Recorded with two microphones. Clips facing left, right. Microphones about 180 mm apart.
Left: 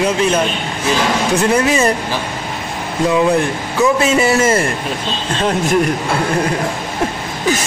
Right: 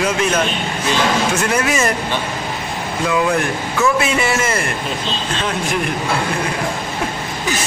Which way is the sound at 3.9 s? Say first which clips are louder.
Left 4 dB; 35° left (ahead or behind).